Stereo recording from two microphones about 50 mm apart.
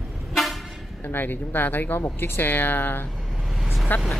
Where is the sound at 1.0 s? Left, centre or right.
Left.